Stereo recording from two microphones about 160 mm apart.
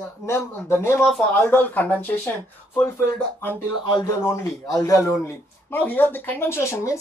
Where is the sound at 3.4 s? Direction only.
20° left (ahead or behind).